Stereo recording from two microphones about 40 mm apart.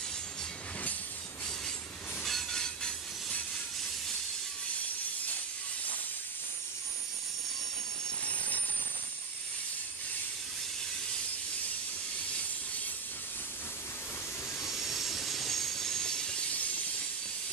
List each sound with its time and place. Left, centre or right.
2.2 s train: centre
2.6 s train: centre
14.7 s train: centre
16.4 s train: left